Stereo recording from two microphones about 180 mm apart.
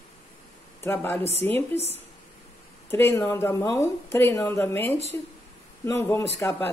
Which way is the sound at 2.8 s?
15° left (ahead or behind).